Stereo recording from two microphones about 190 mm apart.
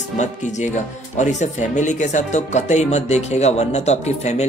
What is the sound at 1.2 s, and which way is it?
Speech, 40° left (ahead or behind).